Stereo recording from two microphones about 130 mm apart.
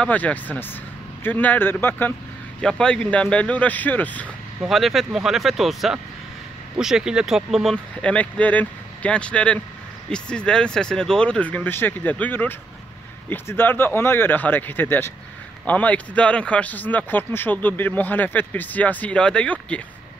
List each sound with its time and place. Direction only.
0.0 s speech: 10° left (ahead or behind)
4.6 s speech: centre (ahead or behind)
7.7 s speech: 10° left (ahead or behind)